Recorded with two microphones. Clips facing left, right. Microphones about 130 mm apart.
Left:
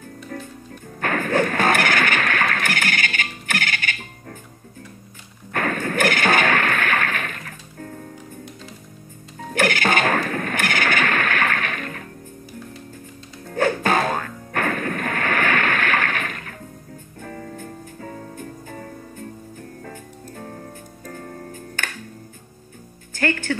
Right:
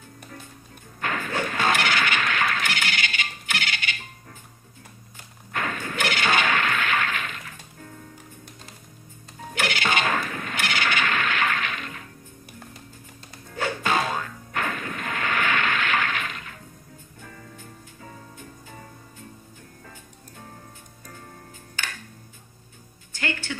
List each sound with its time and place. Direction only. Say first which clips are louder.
0.3 s music: left 12 dB; 55° left (ahead or behind)
5.5 s a sound: left 6 dB; 50° left (ahead or behind)
9.5 s music: left 6 dB; 50° left (ahead or behind)
13.5 s music: left 6 dB; 50° left (ahead or behind)
23.1 s music: left 7 dB; 50° left (ahead or behind)